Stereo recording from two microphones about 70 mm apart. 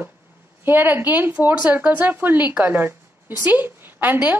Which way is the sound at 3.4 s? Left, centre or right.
Right.